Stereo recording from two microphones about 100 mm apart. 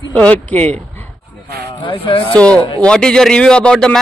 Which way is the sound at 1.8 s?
60° left (ahead or behind).